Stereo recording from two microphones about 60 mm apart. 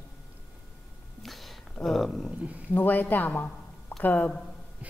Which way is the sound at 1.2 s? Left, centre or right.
Centre.